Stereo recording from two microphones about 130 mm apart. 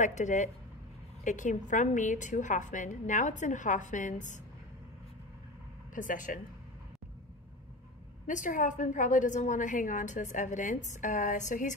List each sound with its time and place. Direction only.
0.0 s a woman's voice: 70° left (ahead or behind)
5.9 s speech: 80° left
8.3 s a woman's voice: 75° left (ahead or behind)